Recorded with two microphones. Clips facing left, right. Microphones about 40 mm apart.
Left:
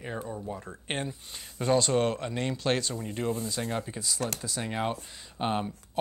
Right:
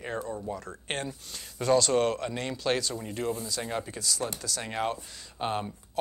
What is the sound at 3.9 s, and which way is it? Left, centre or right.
Speech, left.